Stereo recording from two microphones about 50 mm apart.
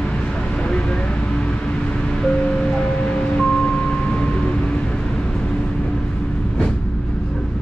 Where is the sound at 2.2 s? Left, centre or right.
Centre.